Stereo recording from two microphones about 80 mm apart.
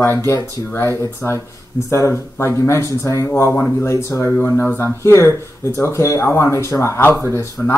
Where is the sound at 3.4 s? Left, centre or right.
Left.